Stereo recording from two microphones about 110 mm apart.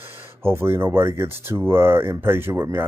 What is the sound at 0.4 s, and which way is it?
Speech, 20° right (ahead or behind).